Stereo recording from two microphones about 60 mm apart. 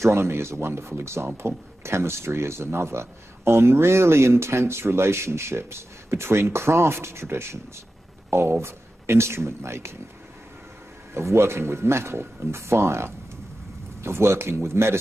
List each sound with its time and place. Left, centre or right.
0.0 s speech: right
11.1 s speech: right